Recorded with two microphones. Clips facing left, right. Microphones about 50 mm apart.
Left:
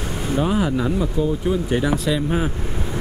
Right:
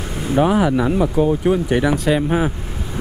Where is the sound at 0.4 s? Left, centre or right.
Right.